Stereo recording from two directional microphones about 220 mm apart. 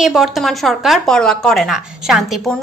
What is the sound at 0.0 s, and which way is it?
Speech, centre (ahead or behind).